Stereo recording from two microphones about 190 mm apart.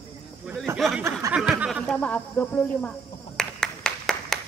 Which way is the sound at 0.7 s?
Centre (ahead or behind).